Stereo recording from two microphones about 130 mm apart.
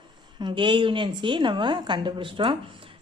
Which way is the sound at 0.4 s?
40° right (ahead or behind).